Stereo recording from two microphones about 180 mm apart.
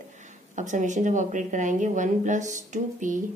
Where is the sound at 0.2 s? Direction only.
45° right (ahead or behind).